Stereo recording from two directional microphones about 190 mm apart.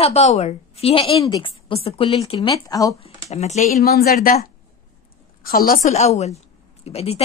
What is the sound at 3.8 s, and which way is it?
Speech, 55° left (ahead or behind).